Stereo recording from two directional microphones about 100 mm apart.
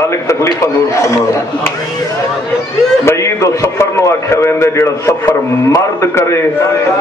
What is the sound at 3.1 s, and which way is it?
A man's voice, 30° left (ahead or behind).